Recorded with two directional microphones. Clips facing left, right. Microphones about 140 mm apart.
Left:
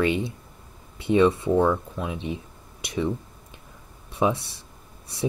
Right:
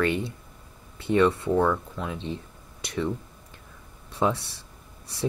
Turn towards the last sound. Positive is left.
turn(degrees=15)  # may be behind; listen again after turning